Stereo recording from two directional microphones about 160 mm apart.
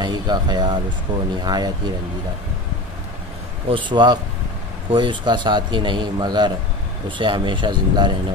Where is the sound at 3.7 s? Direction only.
30° right (ahead or behind).